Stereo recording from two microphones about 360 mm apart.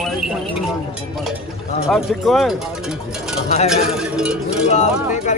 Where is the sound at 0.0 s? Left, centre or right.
Centre.